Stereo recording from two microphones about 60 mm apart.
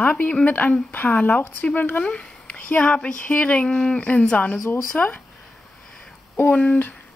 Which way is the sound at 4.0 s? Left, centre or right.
Left.